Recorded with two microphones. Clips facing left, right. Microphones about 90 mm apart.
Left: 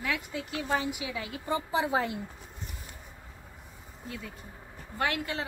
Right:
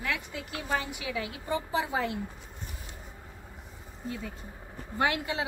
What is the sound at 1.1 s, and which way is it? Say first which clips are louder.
Speech: right 4 dB; 25° left (ahead or behind).